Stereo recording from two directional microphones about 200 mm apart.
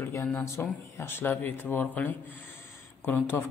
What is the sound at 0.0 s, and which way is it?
A woman's voice, 10° left (ahead or behind).